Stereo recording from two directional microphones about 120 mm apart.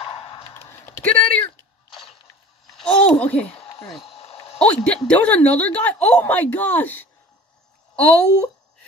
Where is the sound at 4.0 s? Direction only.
55° left (ahead or behind).